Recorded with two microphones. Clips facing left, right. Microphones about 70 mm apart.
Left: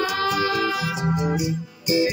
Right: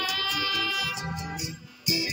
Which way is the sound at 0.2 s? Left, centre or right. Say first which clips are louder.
Left 9 dB; left.